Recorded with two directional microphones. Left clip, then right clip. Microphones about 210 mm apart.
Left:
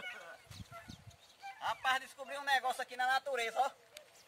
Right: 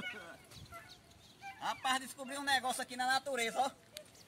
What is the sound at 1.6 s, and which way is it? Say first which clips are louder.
Speech: left 1 dB; 10° right (ahead or behind).